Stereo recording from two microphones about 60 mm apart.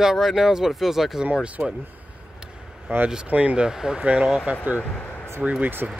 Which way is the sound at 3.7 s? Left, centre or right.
Centre.